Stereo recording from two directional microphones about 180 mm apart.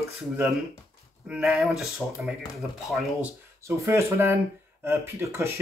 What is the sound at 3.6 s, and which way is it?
Speech, 15° right (ahead or behind).